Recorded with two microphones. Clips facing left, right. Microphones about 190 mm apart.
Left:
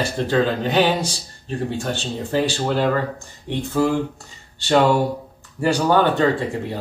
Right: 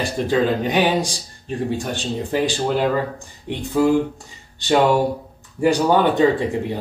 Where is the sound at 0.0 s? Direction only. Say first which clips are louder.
Even; 15° right (ahead or behind).